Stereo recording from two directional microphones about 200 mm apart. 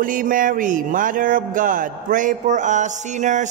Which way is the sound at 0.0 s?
45° right (ahead or behind).